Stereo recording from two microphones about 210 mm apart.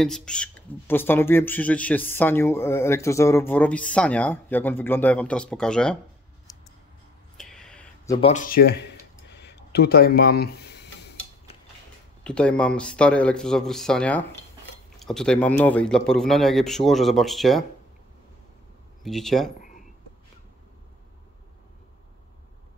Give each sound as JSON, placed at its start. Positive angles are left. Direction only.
{"t": 0.0, "sound": "speech", "side_deg": 5}
{"t": 7.3, "sound": "a sound", "side_deg": 0}
{"t": 8.2, "sound": "speech", "side_deg": 35}
{"t": 9.4, "sound": "a sound", "side_deg": 55}
{"t": 12.2, "sound": "a man's voice", "side_deg": 5}
{"t": 19.0, "sound": "a man's voice", "side_deg": 0}